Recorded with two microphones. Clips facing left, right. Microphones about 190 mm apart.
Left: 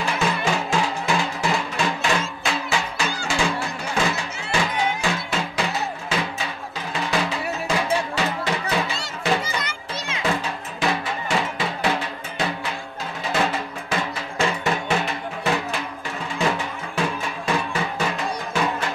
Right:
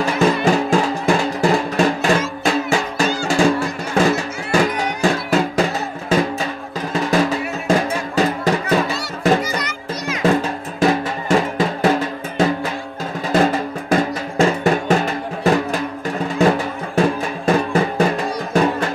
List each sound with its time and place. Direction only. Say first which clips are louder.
0.0 s music: right 8 dB; 40° right (ahead or behind)
9.6 s music: right 5 dB; 25° left (ahead or behind)
10.8 s drum: right 8 dB; 45° right (ahead or behind)